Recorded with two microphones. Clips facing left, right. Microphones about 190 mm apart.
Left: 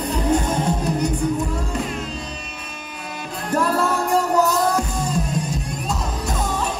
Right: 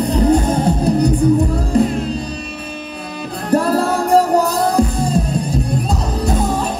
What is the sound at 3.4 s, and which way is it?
Music, 35° right (ahead or behind).